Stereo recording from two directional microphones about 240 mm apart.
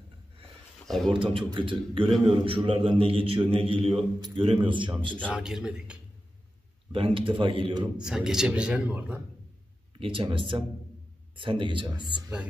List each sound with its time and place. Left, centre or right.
0.8 s speech: centre
1.2 s a man's voice: right
5.2 s speech: centre
6.9 s a man's voice: right
8.0 s speech: centre
9.9 s a man's voice: right